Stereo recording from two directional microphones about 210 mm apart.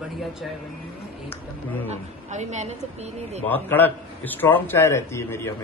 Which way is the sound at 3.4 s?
10° left (ahead or behind).